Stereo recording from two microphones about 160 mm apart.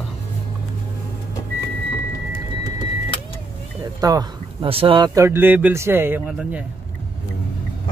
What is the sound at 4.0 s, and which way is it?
Speech, 25° right (ahead or behind).